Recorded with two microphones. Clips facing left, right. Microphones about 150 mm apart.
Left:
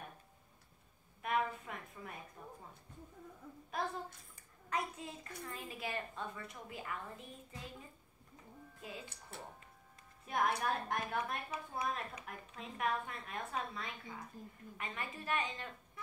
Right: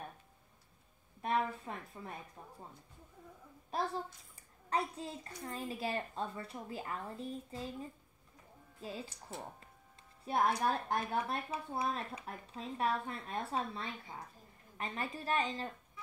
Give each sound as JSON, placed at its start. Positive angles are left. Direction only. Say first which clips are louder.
{"t": 1.2, "sound": "a sound", "louder": "right 2 dB", "side_deg": -30}
{"t": 2.4, "sound": "a woman's voice", "louder": "left 1 dB", "side_deg": -35}
{"t": 3.7, "sound": "a woman's voice", "louder": "right 3 dB", "side_deg": -30}
{"t": 8.8, "sound": "a woman's voice", "louder": "right 5 dB", "side_deg": -35}
{"t": 10.2, "sound": "a woman's voice", "louder": "right 3 dB", "side_deg": -30}